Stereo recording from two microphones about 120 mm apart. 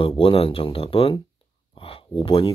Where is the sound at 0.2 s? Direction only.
50° left (ahead or behind).